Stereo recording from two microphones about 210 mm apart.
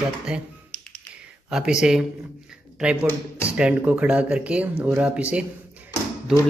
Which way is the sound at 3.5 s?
5° right (ahead or behind).